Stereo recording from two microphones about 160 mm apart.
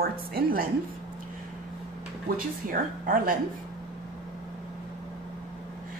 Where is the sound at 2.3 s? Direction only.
60° right (ahead or behind).